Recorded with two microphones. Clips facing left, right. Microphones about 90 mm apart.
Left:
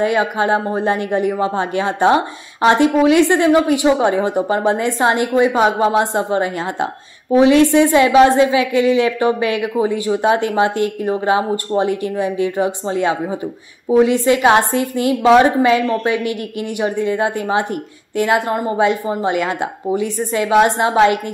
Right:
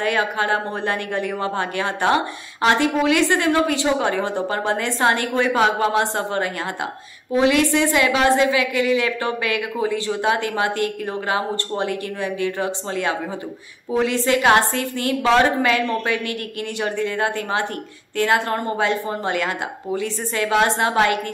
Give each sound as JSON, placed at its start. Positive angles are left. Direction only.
{"t": 0.0, "sound": "speech", "side_deg": 20}